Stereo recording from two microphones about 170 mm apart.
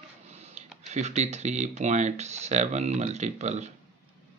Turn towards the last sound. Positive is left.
turn(degrees=-40)  # may be behind; listen again after turning